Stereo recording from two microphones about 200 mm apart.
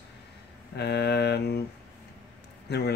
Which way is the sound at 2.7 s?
55° left (ahead or behind).